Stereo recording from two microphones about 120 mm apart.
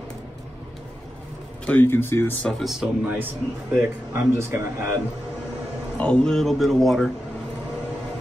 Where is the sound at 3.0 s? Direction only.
15° right (ahead or behind).